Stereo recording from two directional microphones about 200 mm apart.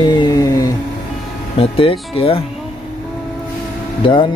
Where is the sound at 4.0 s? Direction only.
25° left (ahead or behind).